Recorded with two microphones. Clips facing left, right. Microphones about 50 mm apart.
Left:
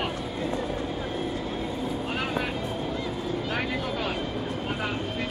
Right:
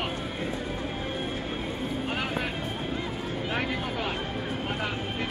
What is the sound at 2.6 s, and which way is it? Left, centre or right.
Vehicle, right.